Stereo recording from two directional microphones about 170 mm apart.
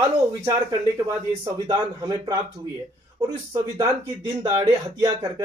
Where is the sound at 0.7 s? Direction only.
25° right (ahead or behind).